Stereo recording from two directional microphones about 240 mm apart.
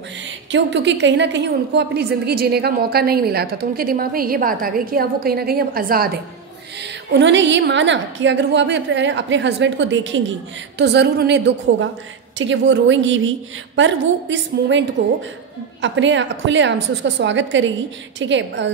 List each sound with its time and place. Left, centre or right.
0.5 s a woman's voice: right